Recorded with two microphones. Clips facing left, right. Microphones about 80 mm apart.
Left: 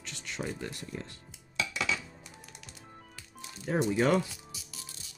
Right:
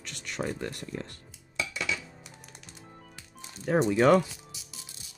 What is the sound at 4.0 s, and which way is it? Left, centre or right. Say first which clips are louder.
Speech: right 6 dB; right.